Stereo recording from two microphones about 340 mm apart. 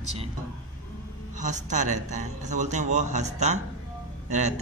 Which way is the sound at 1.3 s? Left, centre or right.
Right.